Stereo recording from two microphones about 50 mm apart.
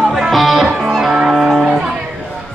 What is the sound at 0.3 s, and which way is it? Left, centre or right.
Music, centre.